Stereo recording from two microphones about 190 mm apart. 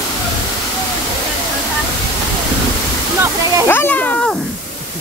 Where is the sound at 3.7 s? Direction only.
10° left (ahead or behind).